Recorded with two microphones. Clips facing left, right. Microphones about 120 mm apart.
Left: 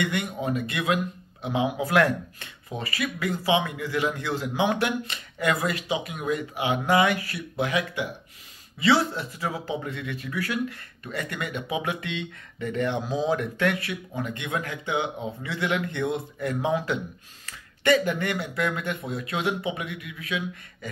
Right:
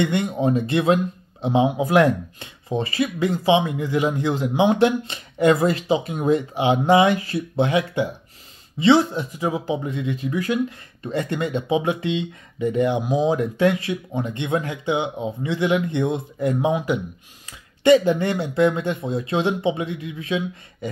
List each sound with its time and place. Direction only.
0.0 s speech: 25° right (ahead or behind)